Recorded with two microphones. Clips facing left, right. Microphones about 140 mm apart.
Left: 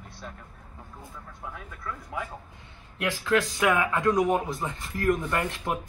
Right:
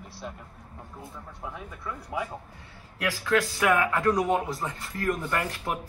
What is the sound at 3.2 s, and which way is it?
Speech, 15° left (ahead or behind).